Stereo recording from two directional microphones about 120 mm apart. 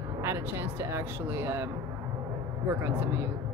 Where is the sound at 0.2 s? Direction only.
20° right (ahead or behind).